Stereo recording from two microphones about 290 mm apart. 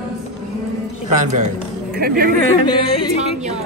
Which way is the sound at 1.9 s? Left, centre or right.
Right.